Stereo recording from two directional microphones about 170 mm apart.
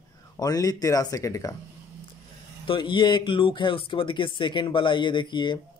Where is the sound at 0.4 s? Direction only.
20° left (ahead or behind).